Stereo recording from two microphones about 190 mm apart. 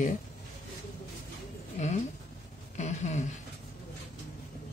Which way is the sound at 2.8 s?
40° left (ahead or behind).